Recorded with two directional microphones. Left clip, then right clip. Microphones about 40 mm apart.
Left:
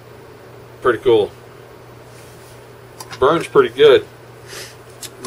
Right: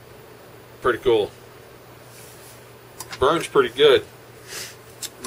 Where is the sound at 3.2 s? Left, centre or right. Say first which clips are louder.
Left 5 dB; right.